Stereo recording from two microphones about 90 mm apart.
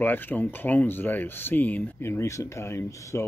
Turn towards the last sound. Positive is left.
turn(degrees=30)  # may be behind; listen again after turning